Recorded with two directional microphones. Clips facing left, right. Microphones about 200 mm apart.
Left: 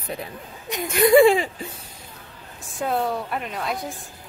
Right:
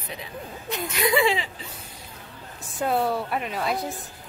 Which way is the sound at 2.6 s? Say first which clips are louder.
Even; centre (ahead or behind).